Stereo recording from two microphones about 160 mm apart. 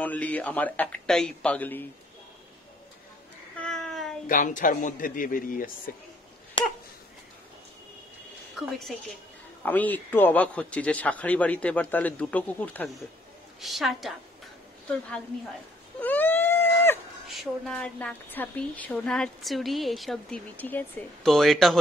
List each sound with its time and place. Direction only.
0.0 s a man's voice: 10° left (ahead or behind)
3.6 s a sound: centre (ahead or behind)
4.3 s a man's voice: 55° left (ahead or behind)
6.6 s dog: 30° left (ahead or behind)
8.5 s a woman's voice: centre (ahead or behind)
16.0 s a sound: 10° left (ahead or behind)
17.3 s a woman's voice: centre (ahead or behind)
21.3 s a woman's voice: centre (ahead or behind)